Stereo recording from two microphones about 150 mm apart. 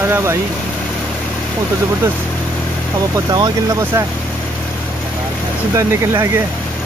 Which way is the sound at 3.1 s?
25° right (ahead or behind).